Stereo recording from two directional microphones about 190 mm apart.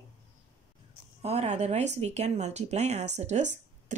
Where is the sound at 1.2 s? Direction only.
35° right (ahead or behind).